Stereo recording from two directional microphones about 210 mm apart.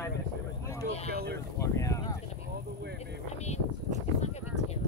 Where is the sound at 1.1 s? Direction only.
50° right (ahead or behind).